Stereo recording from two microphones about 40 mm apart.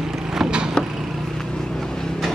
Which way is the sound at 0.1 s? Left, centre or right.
Centre.